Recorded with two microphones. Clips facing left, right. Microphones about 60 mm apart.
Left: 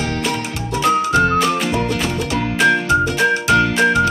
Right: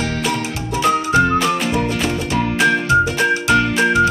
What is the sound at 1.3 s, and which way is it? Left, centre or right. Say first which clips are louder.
Music: even; centre.